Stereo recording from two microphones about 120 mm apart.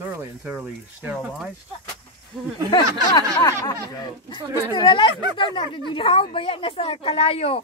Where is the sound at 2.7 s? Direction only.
35° left (ahead or behind).